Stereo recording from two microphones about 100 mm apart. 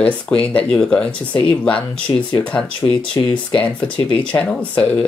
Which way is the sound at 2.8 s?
60° left (ahead or behind).